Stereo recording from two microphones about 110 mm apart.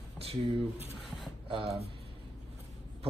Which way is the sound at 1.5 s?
60° right (ahead or behind).